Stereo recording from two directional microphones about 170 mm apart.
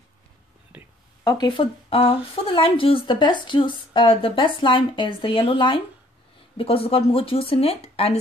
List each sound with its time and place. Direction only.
1.2 s speech: 25° left (ahead or behind)